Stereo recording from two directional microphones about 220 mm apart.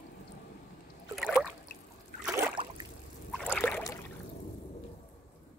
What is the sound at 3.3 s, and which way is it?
Rowboat, centre (ahead or behind).